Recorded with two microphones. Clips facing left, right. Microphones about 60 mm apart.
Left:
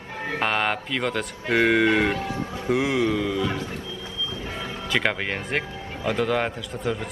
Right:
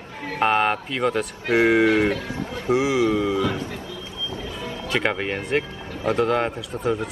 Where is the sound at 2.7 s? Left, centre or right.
Centre.